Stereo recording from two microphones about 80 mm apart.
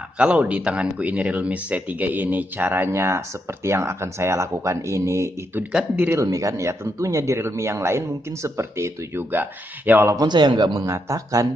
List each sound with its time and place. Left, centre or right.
0.2 s speech: centre
10.1 s speech: right